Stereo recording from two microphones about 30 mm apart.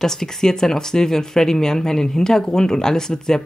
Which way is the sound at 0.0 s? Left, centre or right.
Centre.